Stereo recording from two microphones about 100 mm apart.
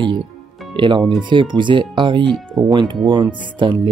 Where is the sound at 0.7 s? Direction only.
50° right (ahead or behind).